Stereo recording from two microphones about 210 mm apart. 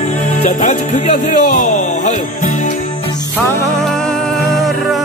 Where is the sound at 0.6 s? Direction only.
35° left (ahead or behind).